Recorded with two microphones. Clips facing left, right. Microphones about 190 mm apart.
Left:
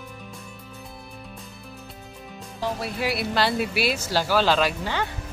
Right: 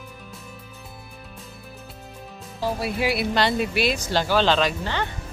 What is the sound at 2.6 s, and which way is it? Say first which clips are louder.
Speech: right 3 dB; 5° right (ahead or behind).